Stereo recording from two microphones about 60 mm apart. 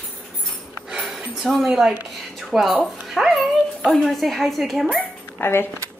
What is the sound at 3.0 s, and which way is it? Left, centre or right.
Dog, centre.